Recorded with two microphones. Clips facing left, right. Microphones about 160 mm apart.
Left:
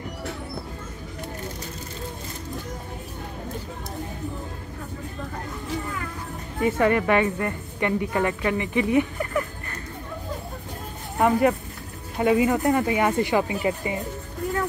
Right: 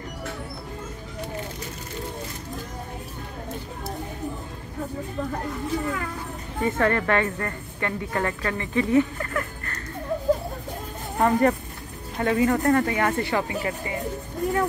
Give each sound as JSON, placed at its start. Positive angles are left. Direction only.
{"t": 6.6, "sound": "a woman's voice", "side_deg": 15}
{"t": 11.1, "sound": "a woman's voice", "side_deg": 10}